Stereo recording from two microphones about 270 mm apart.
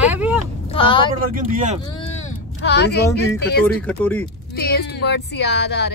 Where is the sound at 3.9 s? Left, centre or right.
Centre.